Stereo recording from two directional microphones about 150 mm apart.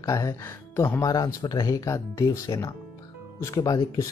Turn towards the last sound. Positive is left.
turn(degrees=25)  # may be behind; listen again after turning